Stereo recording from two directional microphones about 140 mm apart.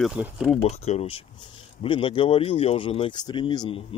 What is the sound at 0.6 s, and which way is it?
Speech, 50° left (ahead or behind).